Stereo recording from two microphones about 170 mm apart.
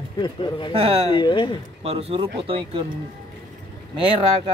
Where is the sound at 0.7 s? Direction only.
35° right (ahead or behind).